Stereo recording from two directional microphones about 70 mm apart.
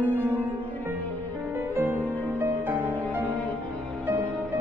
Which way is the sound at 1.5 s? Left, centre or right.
Right.